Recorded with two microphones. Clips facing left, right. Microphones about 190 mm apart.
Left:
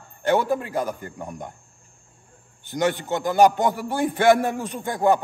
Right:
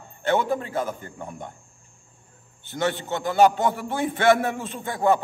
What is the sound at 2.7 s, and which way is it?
A man's voice, 15° left (ahead or behind).